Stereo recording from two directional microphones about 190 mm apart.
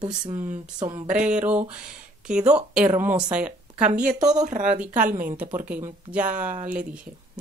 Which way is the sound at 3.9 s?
40° right (ahead or behind).